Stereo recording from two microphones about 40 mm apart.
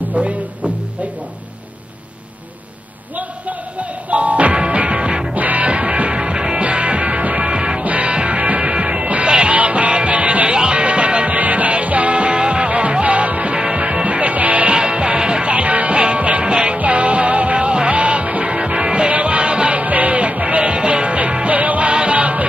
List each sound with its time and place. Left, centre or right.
0.2 s speech: right
4.1 s music: right
5.3 s music: right
10.5 s music: right
11.3 s music: right
14.7 s music: right